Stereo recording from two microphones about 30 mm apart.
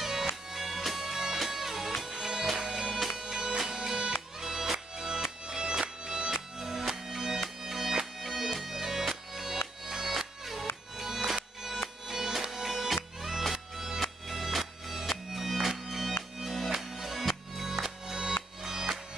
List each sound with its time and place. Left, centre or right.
0.0 s music: centre
6.3 s music: centre